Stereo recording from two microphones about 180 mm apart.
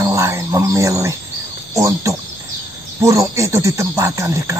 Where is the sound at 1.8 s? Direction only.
15° right (ahead or behind).